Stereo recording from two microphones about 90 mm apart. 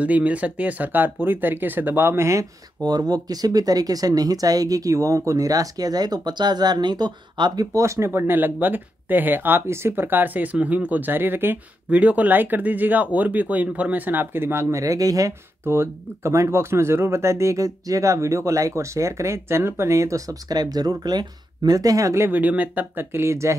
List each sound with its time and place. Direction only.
0.0 s speech: 15° right (ahead or behind); by 2.4 s 30° right (ahead or behind)
2.8 s speech: 45° right (ahead or behind)
7.7 s speech: 35° right (ahead or behind)
15.6 s speech: 30° right (ahead or behind)
22.4 s speech: 20° right (ahead or behind)